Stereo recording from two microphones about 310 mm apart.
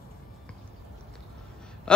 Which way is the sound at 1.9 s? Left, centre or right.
Centre.